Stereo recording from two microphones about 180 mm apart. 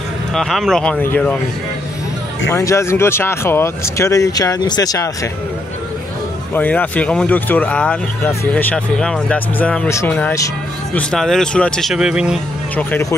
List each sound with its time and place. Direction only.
0.3 s speech: centre (ahead or behind)
2.5 s speech: 15° left (ahead or behind)
6.5 s speech: 10° left (ahead or behind)
12.7 s speech: 10° left (ahead or behind)